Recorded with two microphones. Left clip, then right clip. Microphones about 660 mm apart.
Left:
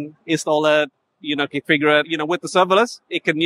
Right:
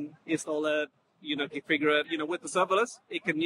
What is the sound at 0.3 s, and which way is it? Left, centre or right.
Speech, left.